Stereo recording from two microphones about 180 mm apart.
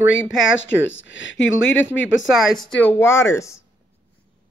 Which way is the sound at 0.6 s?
90° left.